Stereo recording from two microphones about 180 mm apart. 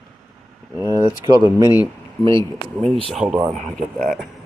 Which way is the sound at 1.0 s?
20° right (ahead or behind).